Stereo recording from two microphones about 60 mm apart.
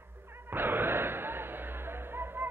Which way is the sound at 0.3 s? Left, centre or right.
Right.